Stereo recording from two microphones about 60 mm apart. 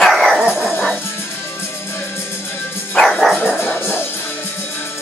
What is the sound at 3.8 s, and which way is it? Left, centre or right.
Music, left.